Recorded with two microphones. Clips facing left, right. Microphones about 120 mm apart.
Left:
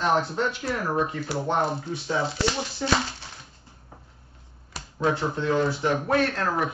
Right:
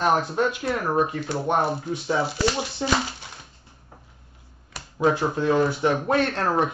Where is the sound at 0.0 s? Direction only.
15° right (ahead or behind).